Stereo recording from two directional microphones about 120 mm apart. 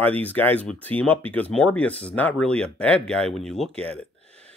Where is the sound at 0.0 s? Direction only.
15° left (ahead or behind).